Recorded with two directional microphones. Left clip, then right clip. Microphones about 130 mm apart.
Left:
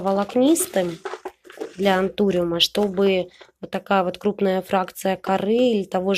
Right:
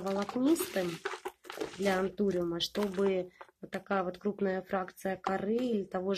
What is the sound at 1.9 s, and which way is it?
Speech, 15° left (ahead or behind).